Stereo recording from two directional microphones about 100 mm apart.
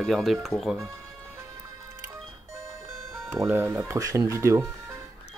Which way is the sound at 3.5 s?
25° right (ahead or behind).